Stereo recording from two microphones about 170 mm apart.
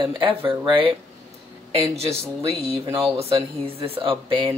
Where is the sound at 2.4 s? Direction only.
20° right (ahead or behind).